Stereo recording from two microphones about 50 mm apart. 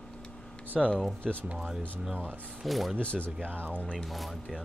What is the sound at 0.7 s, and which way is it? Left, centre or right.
Speech, centre.